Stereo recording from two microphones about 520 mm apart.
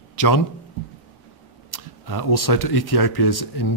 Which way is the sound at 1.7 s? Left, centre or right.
Left.